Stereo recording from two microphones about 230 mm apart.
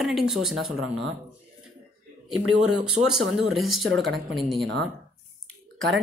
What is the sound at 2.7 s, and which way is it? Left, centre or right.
Speech, right.